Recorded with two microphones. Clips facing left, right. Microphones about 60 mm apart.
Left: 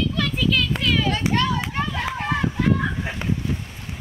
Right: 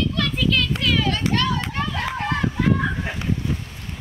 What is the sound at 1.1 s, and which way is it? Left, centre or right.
Run, centre.